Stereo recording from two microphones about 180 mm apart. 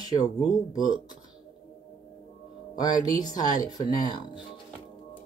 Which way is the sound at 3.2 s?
20° left (ahead or behind).